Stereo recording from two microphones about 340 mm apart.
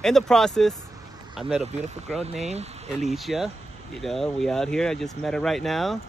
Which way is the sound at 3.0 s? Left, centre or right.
Centre.